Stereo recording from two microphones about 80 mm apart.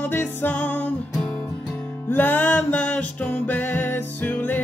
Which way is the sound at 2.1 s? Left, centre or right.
Left.